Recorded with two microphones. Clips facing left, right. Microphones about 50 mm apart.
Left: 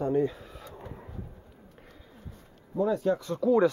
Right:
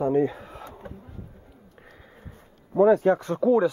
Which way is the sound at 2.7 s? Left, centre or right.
Right.